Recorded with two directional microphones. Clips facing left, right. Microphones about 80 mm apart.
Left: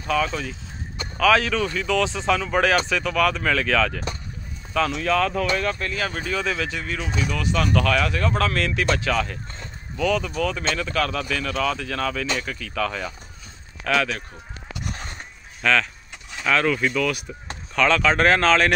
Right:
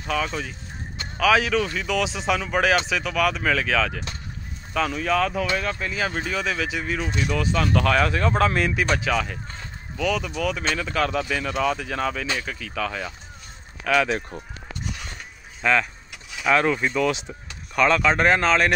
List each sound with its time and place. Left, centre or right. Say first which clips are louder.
0.0 s speech: left 3 dB; centre
5.0 s speech: even; centre
14.0 s speech: right 4 dB; right
15.6 s speech: even; centre
17.7 s speech: even; centre